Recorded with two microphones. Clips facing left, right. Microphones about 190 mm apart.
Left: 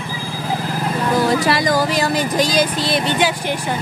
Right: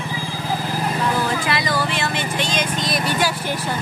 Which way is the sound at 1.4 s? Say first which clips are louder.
Left 5 dB; 40° left (ahead or behind).